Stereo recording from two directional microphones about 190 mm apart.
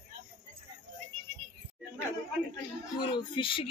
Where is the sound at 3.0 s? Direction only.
25° left (ahead or behind).